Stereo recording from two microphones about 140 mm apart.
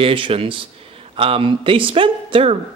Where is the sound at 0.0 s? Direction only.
40° right (ahead or behind).